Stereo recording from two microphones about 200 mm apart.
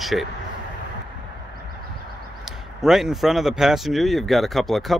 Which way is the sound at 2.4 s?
Centre (ahead or behind).